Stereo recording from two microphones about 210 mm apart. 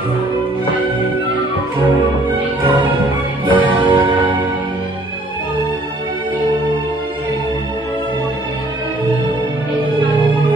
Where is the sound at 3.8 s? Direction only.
25° right (ahead or behind).